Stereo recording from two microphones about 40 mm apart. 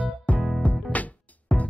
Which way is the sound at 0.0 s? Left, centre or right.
Left.